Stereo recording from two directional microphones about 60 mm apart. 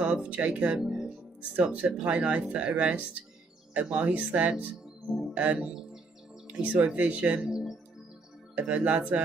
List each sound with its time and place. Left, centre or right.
0.0 s speech: centre
0.7 s speech: centre
1.6 s speech: right